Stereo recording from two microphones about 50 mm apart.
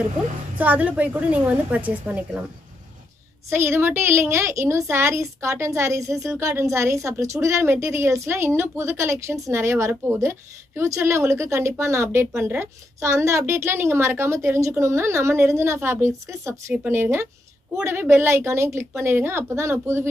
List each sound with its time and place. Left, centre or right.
0.6 s a woman's voice: right
3.4 s a woman's voice: right
4.8 s a woman's voice: right
7.6 s a woman's voice: right
10.8 s a woman's voice: right
13.0 s a woman's voice: right
16.1 s a woman's voice: right
16.9 s a woman's voice: right